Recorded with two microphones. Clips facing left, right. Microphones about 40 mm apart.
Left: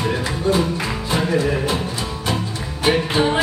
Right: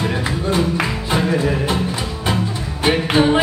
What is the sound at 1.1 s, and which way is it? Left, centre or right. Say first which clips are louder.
Music: even; centre.